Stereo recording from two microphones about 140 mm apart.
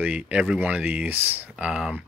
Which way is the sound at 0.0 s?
10° right (ahead or behind).